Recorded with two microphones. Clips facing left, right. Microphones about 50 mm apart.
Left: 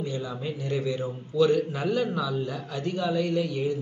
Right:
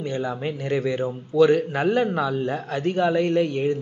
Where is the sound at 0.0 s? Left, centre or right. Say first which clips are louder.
Right 5 dB; right.